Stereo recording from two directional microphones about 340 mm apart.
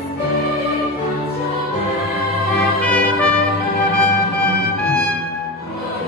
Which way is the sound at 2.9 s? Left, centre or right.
Centre.